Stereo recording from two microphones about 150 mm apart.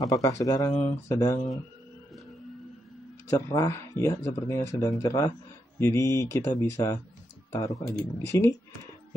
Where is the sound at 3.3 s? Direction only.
20° left (ahead or behind).